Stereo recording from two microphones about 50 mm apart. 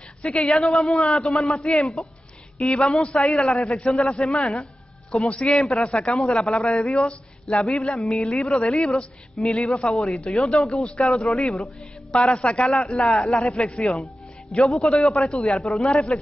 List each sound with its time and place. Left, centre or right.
0.2 s speech: left
0.5 s a man's voice: centre
7.9 s a man's voice: left
12.9 s speech: centre